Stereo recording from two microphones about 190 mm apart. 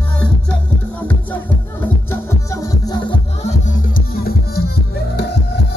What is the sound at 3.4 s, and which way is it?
Music, 45° left (ahead or behind).